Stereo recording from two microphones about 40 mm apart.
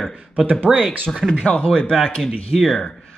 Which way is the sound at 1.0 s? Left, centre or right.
Centre.